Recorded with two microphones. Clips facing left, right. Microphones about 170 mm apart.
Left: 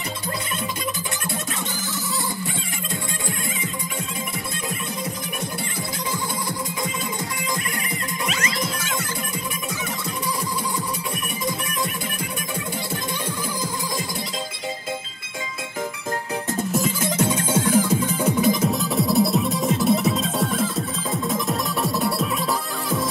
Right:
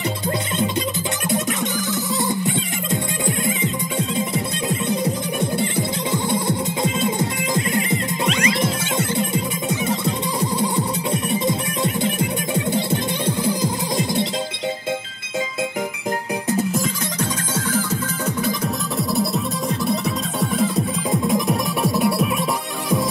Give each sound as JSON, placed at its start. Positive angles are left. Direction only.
{"t": 2.2, "sound": "music", "side_deg": -20}
{"t": 16.7, "sound": "music", "side_deg": 5}
{"t": 18.7, "sound": "music", "side_deg": 0}